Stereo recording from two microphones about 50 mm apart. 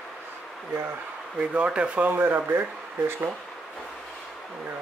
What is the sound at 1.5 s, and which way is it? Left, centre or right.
Speech, right.